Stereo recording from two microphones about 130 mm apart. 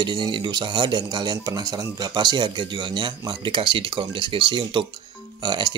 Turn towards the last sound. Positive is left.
turn(degrees=-35)  # may be behind; listen again after turning